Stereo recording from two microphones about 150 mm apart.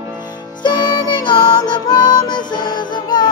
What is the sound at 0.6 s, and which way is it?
Music, 30° left (ahead or behind).